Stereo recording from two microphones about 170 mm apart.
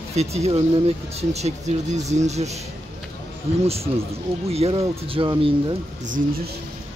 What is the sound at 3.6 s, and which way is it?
Speech, 35° right (ahead or behind).